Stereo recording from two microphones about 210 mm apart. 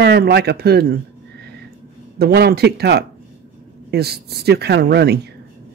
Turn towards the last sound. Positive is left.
turn(degrees=-50)  # may be behind; listen again after turning